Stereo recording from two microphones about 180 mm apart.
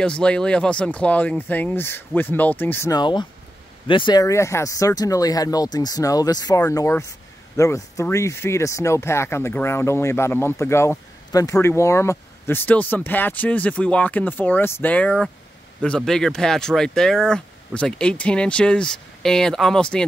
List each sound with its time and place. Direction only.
0.0 s speech: 5° left (ahead or behind)